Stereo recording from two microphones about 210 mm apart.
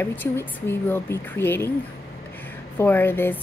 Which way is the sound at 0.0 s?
10° left (ahead or behind).